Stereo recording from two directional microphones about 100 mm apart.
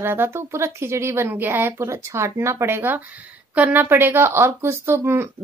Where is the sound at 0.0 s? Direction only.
25° right (ahead or behind).